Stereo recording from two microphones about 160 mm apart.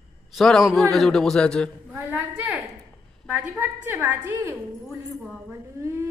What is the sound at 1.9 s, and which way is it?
A woman's voice, 10° right (ahead or behind).